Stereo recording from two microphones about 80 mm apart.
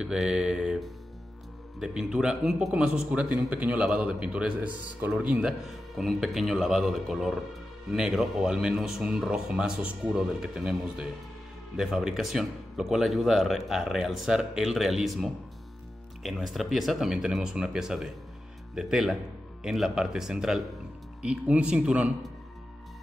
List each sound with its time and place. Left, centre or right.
0.0 s a man's voice: centre
5.9 s speech: centre